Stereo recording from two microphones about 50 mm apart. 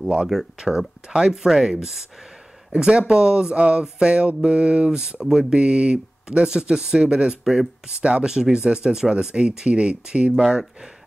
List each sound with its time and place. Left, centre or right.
0.0 s speech: centre
5.2 s speech: centre
5.6 s speech: right